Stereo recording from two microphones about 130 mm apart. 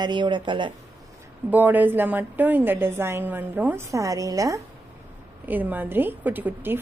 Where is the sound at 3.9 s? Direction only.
25° right (ahead or behind).